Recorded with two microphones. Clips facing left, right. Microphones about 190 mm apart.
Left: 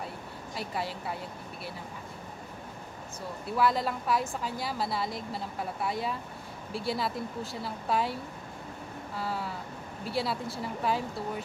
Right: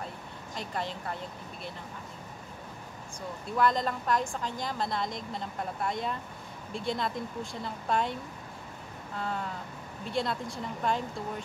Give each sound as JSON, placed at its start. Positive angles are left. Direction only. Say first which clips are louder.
{"t": 0.6, "sound": "speech", "louder": "left 1 dB", "side_deg": 5}
{"t": 3.5, "sound": "a woman's voice", "louder": "even", "side_deg": 5}